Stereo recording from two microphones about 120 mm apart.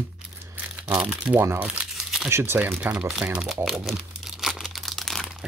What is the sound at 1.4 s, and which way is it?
Speech, 20° right (ahead or behind).